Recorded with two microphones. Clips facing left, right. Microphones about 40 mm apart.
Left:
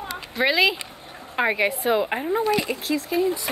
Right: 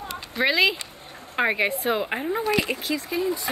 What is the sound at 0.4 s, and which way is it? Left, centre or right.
Speech, centre.